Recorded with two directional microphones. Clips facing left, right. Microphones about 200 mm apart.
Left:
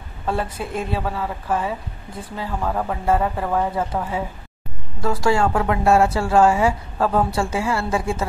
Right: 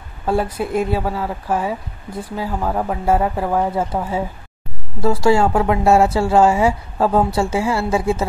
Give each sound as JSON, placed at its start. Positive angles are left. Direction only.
{"t": 0.6, "sound": "a woman's voice", "side_deg": -25}
{"t": 1.0, "sound": "speech", "side_deg": -10}
{"t": 3.7, "sound": "a woman's voice", "side_deg": -30}